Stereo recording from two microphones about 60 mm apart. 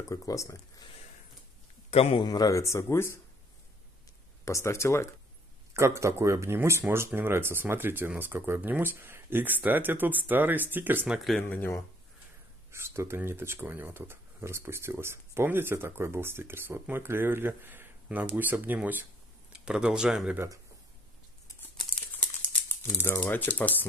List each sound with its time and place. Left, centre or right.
0.1 s speech: left
2.2 s a man's voice: left
2.6 s speech: left
4.5 s speech: left
5.7 s speech: right
11.1 s speech: centre
11.4 s speech: left
12.7 s speech: right
19.5 s speech: centre
23.0 s speech: left